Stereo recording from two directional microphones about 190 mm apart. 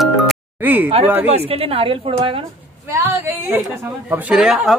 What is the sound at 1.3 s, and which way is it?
A woman's voice, 30° right (ahead or behind).